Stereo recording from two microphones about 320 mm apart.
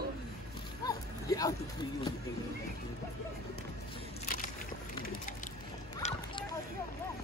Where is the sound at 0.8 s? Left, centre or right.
Centre.